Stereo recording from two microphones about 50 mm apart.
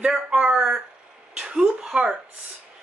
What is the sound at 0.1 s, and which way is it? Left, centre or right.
Speech, centre.